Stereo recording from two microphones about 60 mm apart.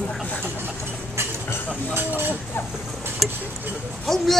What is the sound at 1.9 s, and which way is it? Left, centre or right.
Speech, right.